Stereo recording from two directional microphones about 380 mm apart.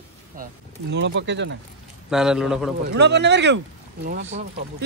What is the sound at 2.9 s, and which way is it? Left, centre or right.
Speech, right.